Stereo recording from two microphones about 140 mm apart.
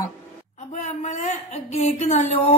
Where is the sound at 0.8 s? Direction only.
55° left (ahead or behind).